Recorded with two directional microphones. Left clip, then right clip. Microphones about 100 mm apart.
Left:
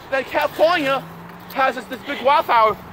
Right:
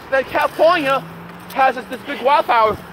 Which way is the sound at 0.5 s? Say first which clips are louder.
Right 3 dB; 45° left (ahead or behind).